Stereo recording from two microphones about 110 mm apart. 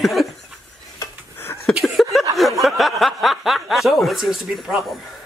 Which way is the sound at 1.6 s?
Centre (ahead or behind).